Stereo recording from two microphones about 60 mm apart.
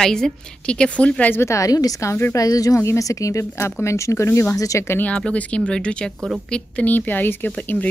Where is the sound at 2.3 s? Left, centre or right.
Left.